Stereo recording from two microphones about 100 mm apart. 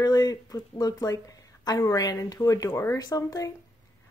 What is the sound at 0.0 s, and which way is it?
A woman's voice, 40° left (ahead or behind).